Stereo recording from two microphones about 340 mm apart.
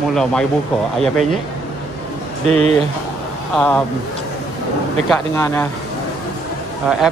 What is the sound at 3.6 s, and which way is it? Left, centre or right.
Speech, centre.